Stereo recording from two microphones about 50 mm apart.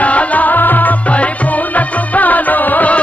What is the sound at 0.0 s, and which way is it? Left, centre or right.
Music, left.